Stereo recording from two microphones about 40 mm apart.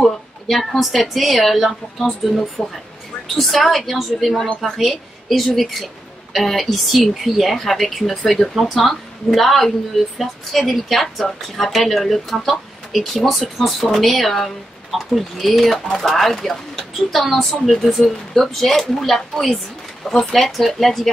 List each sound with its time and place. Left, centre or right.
0.0 s speech: centre
2.6 s speech: centre
3.3 s a woman's voice: centre
10.7 s speech: centre